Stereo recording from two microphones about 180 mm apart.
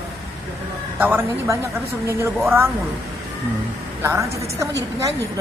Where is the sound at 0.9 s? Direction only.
10° right (ahead or behind).